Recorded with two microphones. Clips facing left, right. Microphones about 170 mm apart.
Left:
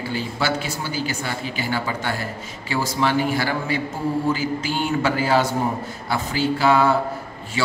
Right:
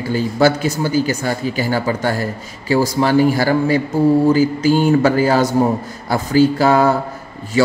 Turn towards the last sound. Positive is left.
turn(degrees=-40)  # may be behind; listen again after turning